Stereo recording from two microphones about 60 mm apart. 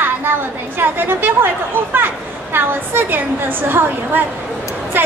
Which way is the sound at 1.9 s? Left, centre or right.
Right.